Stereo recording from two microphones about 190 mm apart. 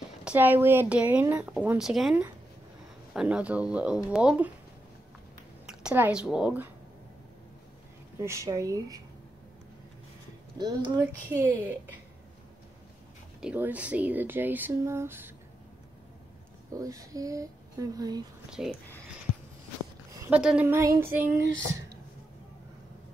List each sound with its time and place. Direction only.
0.2 s a woman's voice: 10° right (ahead or behind)
5.7 s speech: 5° right (ahead or behind)
8.2 s a woman's voice: 15° right (ahead or behind)
10.6 s a woman's voice: 20° right (ahead or behind)
13.4 s a woman's voice: 5° right (ahead or behind)
16.7 s speech: 20° right (ahead or behind)
18.5 s speech: centre (ahead or behind)
20.2 s a woman's voice: 5° right (ahead or behind)